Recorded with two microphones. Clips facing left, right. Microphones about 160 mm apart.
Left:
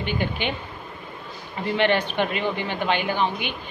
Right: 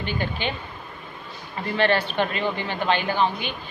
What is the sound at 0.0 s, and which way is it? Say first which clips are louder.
Speech: left 1 dB; 15° left (ahead or behind).